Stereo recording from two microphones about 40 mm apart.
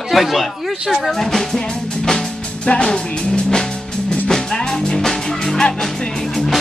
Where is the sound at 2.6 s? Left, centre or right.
Left.